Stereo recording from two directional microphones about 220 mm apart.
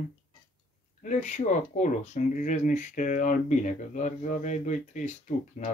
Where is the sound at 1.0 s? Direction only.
35° left (ahead or behind).